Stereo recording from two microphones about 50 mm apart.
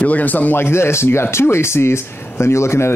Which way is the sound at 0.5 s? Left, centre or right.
Left.